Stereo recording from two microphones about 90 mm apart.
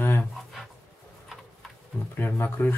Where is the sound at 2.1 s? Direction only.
25° left (ahead or behind).